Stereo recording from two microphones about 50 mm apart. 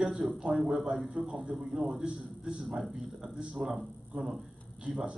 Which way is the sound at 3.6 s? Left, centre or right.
Centre.